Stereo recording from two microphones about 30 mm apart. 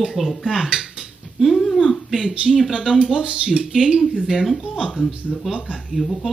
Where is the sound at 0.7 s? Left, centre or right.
Centre.